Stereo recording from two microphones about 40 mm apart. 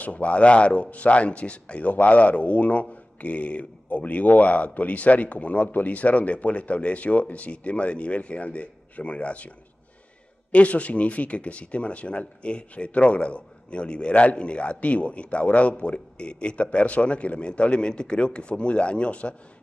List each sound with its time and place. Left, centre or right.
0.0 s speech: left
10.5 s a man's voice: left